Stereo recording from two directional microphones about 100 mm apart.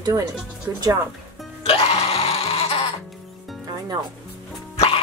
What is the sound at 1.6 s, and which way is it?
Music, 75° left (ahead or behind).